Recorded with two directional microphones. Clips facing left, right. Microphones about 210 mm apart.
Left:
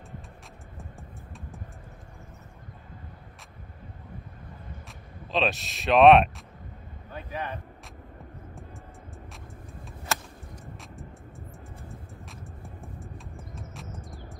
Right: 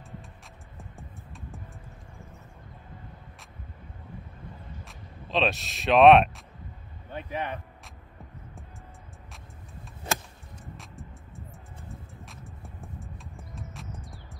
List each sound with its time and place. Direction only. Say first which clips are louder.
0.7 s music: even; centre (ahead or behind)
4.8 s speech: even; centre (ahead or behind)
7.1 s a sound: right 2 dB; 25° right (ahead or behind)
11.9 s music: left 1 dB; centre (ahead or behind)